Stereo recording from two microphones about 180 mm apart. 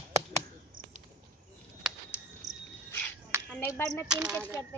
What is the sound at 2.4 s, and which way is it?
Cricket, 40° right (ahead or behind).